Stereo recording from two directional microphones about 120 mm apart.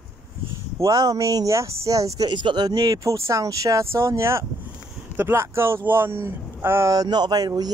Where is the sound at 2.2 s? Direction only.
40° right (ahead or behind).